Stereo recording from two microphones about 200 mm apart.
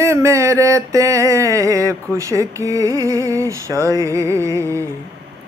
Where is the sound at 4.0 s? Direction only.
15° right (ahead or behind).